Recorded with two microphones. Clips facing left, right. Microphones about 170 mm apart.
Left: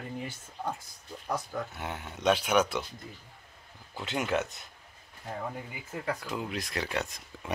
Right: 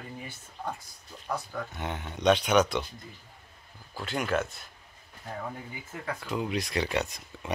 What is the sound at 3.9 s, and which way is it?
Speech, 20° left (ahead or behind).